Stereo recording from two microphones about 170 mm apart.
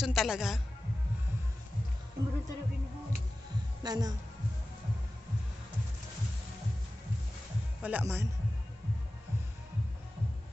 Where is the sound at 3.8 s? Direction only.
25° right (ahead or behind).